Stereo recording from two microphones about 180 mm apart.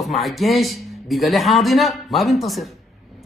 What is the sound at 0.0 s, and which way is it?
A man's voice, centre (ahead or behind).